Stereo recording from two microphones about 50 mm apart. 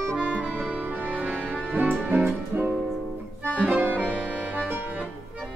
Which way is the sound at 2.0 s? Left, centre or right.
Right.